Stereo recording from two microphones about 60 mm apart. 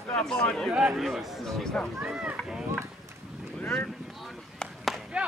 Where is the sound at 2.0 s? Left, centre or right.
Centre.